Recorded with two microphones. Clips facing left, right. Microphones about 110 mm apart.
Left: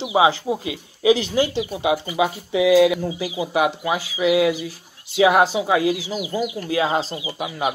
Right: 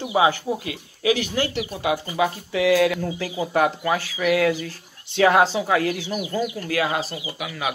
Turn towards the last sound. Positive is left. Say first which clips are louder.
# left 4 dB
turn(degrees=25)  # may be behind; listen again after turning